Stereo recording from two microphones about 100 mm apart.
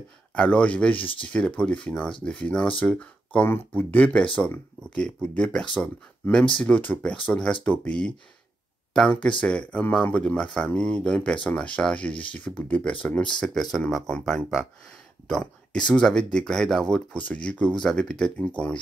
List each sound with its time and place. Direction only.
0.3 s speech: 10° left (ahead or behind)
0.9 s speech: 60° left (ahead or behind)
1.3 s speech: 10° left (ahead or behind)
9.4 s speech: 10° left (ahead or behind)
12.1 s speech: 60° left (ahead or behind)
12.4 s speech: 15° left (ahead or behind)